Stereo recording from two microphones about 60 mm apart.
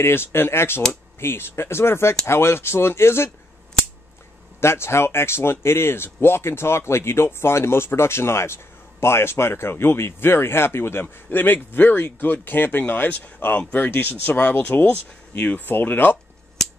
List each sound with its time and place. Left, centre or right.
0.0 s speech: left
4.6 s speech: left